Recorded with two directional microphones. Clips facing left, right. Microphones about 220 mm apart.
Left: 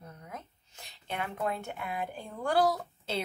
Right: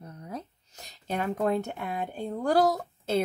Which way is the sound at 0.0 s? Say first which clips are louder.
Right 6 dB; 35° right (ahead or behind).